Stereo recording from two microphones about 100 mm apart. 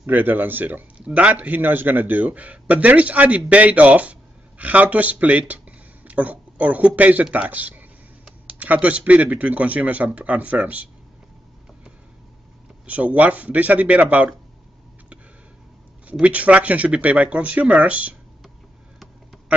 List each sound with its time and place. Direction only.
0.0 s a man's voice: 20° right (ahead or behind)
12.8 s speech: 15° right (ahead or behind)
16.1 s speech: 15° right (ahead or behind)